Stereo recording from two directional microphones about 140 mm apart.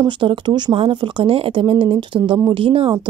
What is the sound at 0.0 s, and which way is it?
Speech, 35° right (ahead or behind).